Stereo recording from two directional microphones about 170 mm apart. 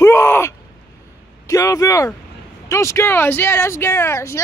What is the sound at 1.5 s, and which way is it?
Speech, 20° left (ahead or behind).